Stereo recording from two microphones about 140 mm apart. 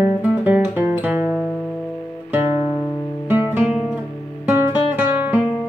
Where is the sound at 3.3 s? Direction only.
15° right (ahead or behind).